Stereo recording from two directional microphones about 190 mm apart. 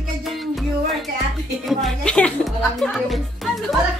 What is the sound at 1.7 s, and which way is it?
Speech, centre (ahead or behind).